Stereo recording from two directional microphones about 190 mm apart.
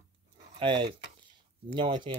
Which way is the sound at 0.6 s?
25° right (ahead or behind).